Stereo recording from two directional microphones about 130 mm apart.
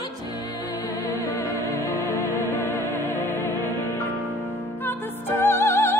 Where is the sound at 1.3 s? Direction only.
20° left (ahead or behind).